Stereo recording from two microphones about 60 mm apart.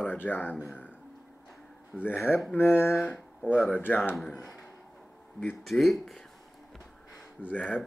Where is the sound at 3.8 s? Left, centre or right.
Left.